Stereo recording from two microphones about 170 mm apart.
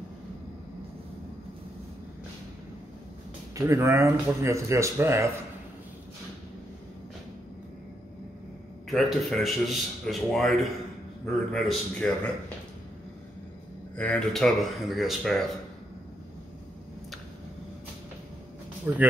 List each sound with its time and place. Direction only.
3.5 s speech: 15° right (ahead or behind)
8.9 s speech: centre (ahead or behind)
13.9 s speech: 10° left (ahead or behind)
18.9 s speech: 10° right (ahead or behind)